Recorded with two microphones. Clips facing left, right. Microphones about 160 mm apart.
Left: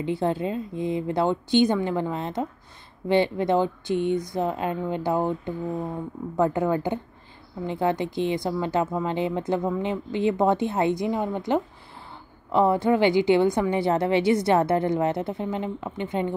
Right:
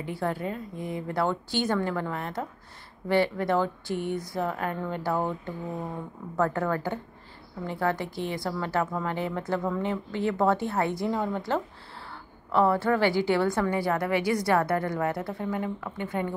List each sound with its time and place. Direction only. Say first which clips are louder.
0.0 s a woman's voice: left 5 dB; 25° left (ahead or behind)